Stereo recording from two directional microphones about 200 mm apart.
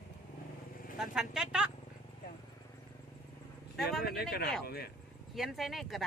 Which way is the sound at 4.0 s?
50° left (ahead or behind).